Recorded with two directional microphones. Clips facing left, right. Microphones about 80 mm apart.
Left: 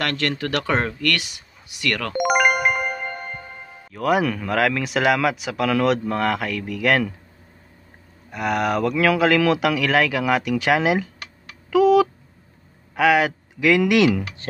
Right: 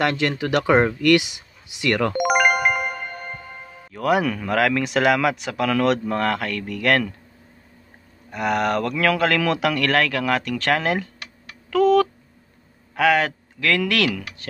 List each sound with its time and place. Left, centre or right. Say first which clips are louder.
0.0 s speech: right 3 dB; centre
2.1 s music: left 4 dB; centre
3.9 s speech: even; centre
8.3 s speech: even; centre
13.6 s speech: left 5 dB; centre
14.4 s speech: left 5 dB; left